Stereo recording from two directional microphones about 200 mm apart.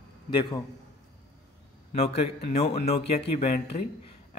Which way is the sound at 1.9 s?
30° left (ahead or behind).